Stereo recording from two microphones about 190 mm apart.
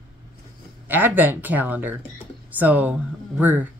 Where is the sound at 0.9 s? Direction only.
10° right (ahead or behind).